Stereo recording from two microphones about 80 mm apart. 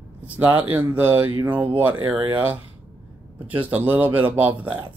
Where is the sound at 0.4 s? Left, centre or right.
Right.